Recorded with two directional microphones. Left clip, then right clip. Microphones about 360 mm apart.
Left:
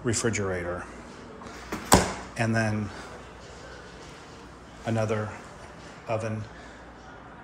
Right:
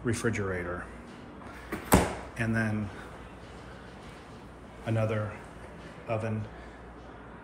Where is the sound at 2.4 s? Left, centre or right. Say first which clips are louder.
Left 4 dB; centre.